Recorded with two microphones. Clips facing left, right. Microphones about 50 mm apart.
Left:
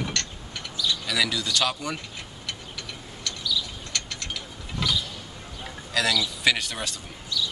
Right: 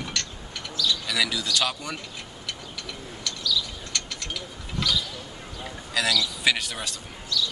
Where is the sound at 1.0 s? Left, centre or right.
Centre.